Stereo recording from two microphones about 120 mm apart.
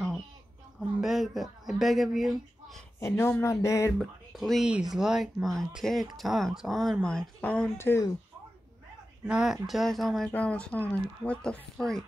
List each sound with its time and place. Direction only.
0.7 s speech: centre (ahead or behind)
3.0 s speech: 20° left (ahead or behind)
4.0 s speech: centre (ahead or behind)
7.7 s speech: 20° left (ahead or behind)
9.2 s speech: 5° right (ahead or behind)